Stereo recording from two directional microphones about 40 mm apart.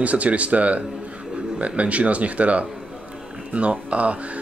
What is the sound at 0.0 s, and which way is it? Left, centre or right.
Speech, right.